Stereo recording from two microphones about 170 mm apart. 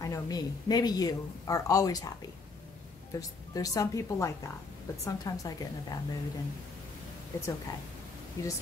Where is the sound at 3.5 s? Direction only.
20° left (ahead or behind).